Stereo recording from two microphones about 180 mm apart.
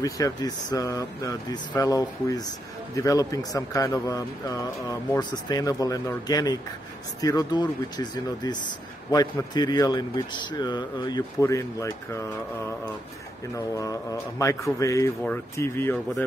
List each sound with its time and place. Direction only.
0.0 s speech: 20° left (ahead or behind)
13.7 s speech: 20° left (ahead or behind)